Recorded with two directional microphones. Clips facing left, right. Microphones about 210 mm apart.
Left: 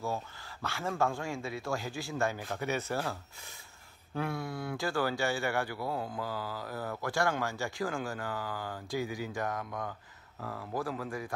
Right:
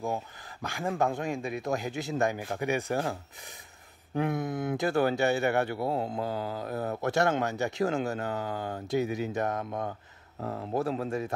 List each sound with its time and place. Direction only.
0.0 s speech: 15° right (ahead or behind)